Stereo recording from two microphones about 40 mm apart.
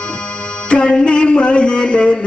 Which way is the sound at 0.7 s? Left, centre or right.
Left.